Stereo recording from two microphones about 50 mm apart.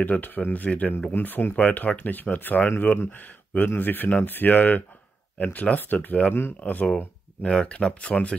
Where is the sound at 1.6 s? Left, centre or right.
Left.